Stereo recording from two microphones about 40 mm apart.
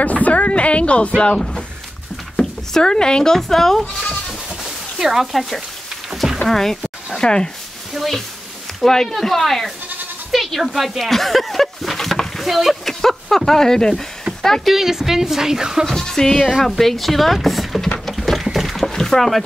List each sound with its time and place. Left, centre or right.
0.0 s a sound: left
1.3 s speech: centre
2.3 s a sound: centre
3.3 s speech: centre
4.6 s speech: centre
7.2 s speech: centre
7.9 s speech: centre
8.8 s speech: centre
14.7 s speech: centre
15.9 s speech: centre
16.3 s speech: centre
16.6 s speech: centre
18.0 s a sound: centre